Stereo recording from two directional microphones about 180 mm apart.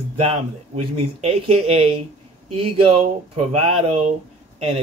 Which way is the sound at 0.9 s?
30° right (ahead or behind).